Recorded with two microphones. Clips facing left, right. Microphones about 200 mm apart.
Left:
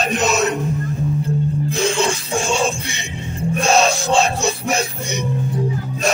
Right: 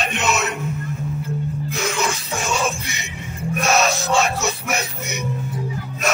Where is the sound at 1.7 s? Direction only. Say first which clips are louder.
Left 4 dB; 30° left (ahead or behind).